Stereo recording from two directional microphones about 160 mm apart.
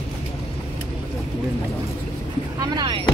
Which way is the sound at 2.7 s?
30° right (ahead or behind).